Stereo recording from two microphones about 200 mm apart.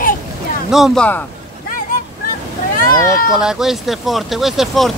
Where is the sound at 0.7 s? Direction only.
Centre (ahead or behind).